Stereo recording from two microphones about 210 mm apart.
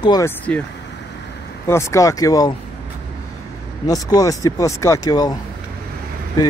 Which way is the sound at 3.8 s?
20° left (ahead or behind).